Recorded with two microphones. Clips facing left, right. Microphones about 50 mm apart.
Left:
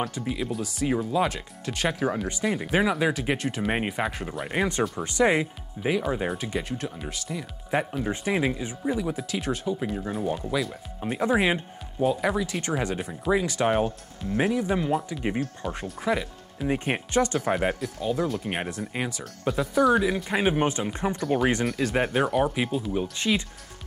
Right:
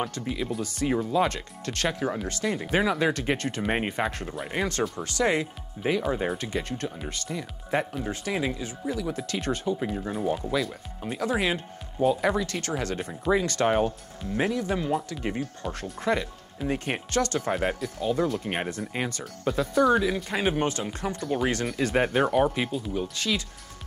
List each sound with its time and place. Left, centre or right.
0.1 s speech: centre
4.5 s speech: centre
8.0 s speech: left
9.1 s speech: centre
11.1 s speech: left
12.0 s speech: centre
12.6 s speech: centre
12.9 s speech: centre
14.3 s speech: centre
16.6 s speech: centre
21.6 s speech: centre
23.1 s speech: left